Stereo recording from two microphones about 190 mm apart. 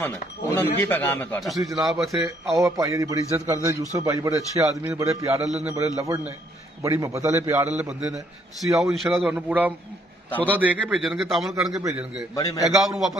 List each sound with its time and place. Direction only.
0.0 s speech: 10° left (ahead or behind)
1.4 s speech: centre (ahead or behind)
2.5 s a man's voice: 15° right (ahead or behind)
8.9 s a man's voice: centre (ahead or behind)
12.4 s a man's voice: 20° left (ahead or behind)
12.8 s speech: centre (ahead or behind)